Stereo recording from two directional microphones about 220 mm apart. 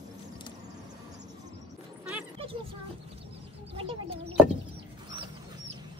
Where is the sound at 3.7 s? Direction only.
25° right (ahead or behind).